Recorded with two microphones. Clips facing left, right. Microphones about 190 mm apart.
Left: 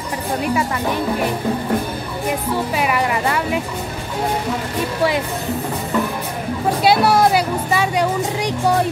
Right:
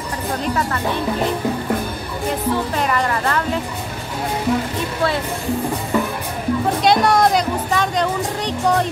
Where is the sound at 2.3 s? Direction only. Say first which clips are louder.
Right 1 dB; 10° left (ahead or behind).